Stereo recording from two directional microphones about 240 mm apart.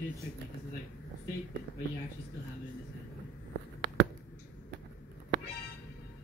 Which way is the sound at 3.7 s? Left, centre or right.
Right.